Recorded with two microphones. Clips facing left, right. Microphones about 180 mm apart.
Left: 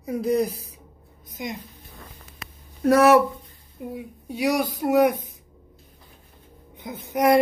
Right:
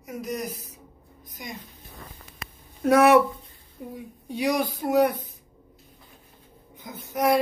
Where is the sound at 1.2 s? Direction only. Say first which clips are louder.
Left 7 dB; 20° left (ahead or behind).